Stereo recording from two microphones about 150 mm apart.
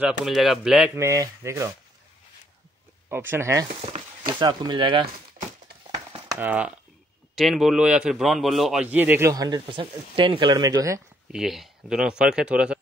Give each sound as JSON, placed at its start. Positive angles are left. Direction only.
{"t": 0.0, "sound": "a man's voice", "side_deg": 0}
{"t": 0.9, "sound": "speech", "side_deg": -20}
{"t": 3.1, "sound": "speech", "side_deg": -15}
{"t": 4.3, "sound": "speech", "side_deg": -30}
{"t": 6.3, "sound": "a man's voice", "side_deg": -10}
{"t": 8.8, "sound": "speech", "side_deg": -10}
{"t": 11.3, "sound": "a man's voice", "side_deg": 0}